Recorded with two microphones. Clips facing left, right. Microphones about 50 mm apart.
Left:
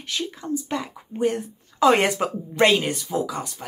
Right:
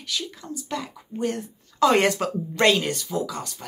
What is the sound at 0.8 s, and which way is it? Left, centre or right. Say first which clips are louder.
Speech: left 4 dB; centre.